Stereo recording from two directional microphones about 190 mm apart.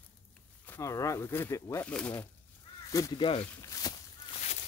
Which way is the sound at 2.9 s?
20° left (ahead or behind).